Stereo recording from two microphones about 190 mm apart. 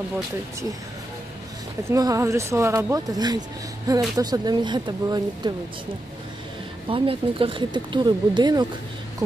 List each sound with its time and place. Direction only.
1.9 s speech: 15° right (ahead or behind)
6.9 s speech: 30° right (ahead or behind)